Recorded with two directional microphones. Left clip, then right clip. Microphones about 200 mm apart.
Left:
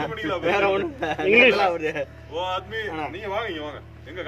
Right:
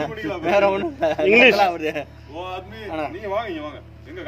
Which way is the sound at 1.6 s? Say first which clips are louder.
Right 3 dB; 60° right (ahead or behind).